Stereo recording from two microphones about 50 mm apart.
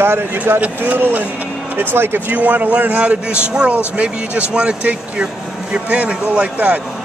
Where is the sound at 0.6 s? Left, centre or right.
Right.